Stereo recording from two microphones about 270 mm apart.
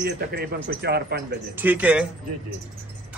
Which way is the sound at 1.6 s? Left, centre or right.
Centre.